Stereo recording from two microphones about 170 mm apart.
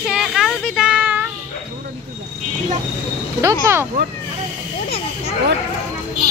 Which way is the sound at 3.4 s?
15° right (ahead or behind).